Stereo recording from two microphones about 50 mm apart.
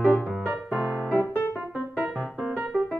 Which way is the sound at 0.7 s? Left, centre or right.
Right.